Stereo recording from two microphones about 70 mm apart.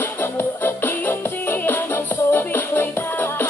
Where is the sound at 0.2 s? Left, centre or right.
Left.